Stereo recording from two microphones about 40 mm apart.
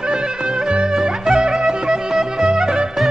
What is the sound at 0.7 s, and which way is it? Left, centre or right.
Music, centre.